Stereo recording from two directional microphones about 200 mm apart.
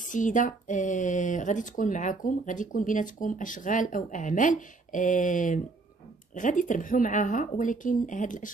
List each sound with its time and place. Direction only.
0.0 s speech: 40° left (ahead or behind)